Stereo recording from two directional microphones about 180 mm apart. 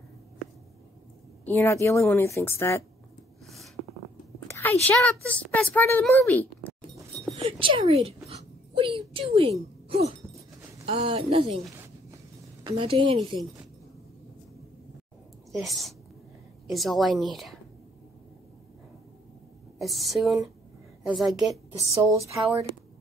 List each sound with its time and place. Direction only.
1.4 s a woman's voice: 10° left (ahead or behind)
3.4 s a sound: centre (ahead or behind)
4.5 s a woman's voice: 15° left (ahead or behind)
7.3 s speech: 30° right (ahead or behind)
8.3 s a sound: 30° right (ahead or behind)
10.9 s speech: 30° right (ahead or behind)
12.6 s a woman's voice: 30° right (ahead or behind)
15.5 s a woman's voice: centre (ahead or behind)
19.8 s a woman's voice: centre (ahead or behind)
21.7 s speech: 15° right (ahead or behind)